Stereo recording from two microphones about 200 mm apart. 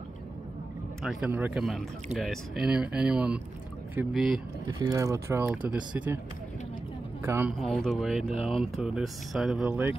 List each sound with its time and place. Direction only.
1.0 s speech: 5° right (ahead or behind)
4.6 s speech: 15° right (ahead or behind)
7.2 s speech: 10° right (ahead or behind)
7.6 s speech: centre (ahead or behind)